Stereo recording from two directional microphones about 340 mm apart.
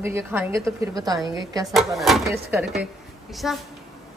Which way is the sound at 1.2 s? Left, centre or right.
Centre.